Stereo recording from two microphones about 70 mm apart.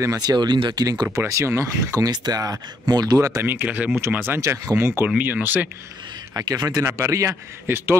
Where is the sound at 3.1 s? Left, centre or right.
Right.